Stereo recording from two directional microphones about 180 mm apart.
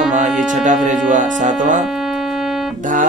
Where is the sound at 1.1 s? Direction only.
45° right (ahead or behind).